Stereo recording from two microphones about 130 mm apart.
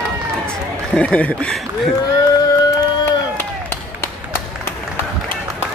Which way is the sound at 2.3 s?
25° left (ahead or behind).